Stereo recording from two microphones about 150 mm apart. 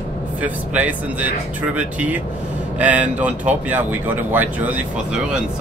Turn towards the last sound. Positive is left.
turn(degrees=-10)  # may be behind; listen again after turning